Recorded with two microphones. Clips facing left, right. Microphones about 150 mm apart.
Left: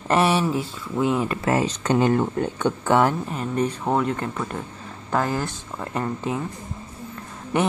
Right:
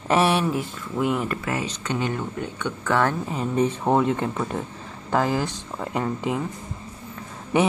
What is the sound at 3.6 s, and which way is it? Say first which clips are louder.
Speech: right 2 dB; 20° right (ahead or behind).